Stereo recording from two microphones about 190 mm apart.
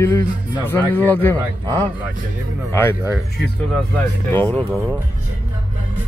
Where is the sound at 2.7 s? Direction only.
15° left (ahead or behind).